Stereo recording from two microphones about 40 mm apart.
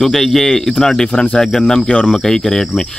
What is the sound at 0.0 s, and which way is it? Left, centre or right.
Speech, centre.